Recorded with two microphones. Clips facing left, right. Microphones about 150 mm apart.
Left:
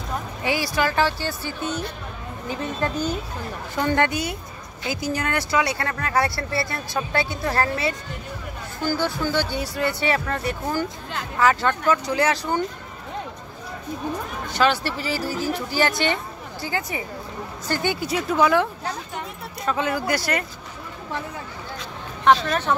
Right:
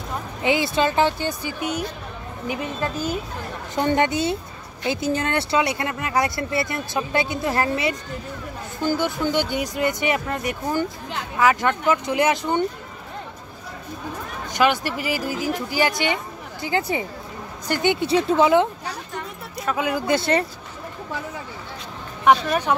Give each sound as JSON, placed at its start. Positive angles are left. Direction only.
{"t": 0.4, "sound": "speech", "side_deg": -20}
{"t": 3.7, "sound": "speech", "side_deg": -20}
{"t": 14.5, "sound": "speech", "side_deg": -15}
{"t": 19.6, "sound": "speech", "side_deg": -10}
{"t": 20.1, "sound": "speech", "side_deg": -25}
{"t": 22.2, "sound": "speech", "side_deg": -10}